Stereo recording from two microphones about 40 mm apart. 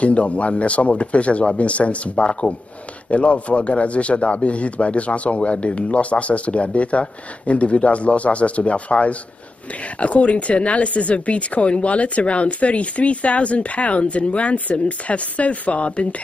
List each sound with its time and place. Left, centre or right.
0.0 s speech: left